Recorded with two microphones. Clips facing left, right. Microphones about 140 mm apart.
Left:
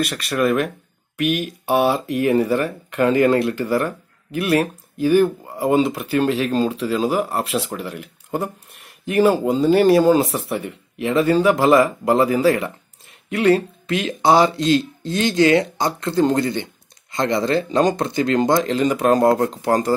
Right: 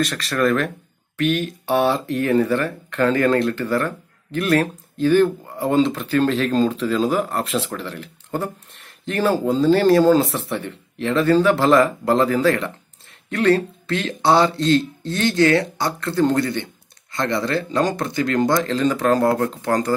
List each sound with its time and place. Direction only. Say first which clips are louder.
0.0 s speech: even; 10° left (ahead or behind)